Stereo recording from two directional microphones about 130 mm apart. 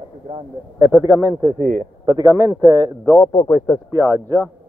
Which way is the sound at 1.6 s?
90° right.